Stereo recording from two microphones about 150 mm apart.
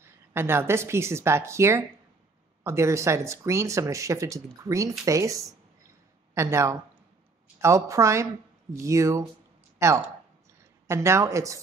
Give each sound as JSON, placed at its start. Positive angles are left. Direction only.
{"t": 0.0, "sound": "speech", "side_deg": -15}